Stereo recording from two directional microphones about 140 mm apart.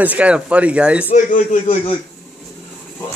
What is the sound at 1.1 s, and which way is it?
Speech, 65° left (ahead or behind).